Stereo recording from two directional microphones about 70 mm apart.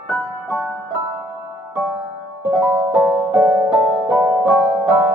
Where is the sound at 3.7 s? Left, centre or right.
Centre.